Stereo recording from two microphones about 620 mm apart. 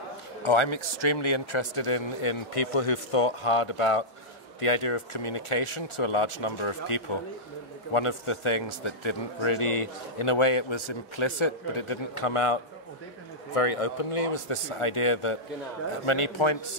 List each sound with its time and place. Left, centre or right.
0.4 s a man's voice: left
13.6 s a man's voice: left